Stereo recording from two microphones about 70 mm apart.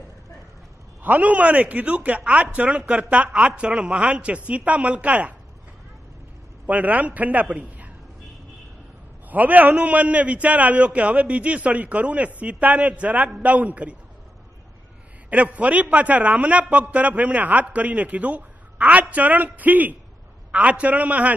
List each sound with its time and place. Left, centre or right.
1.0 s a man's voice: right
6.6 s a man's voice: right
9.3 s a man's voice: right
15.2 s a man's voice: right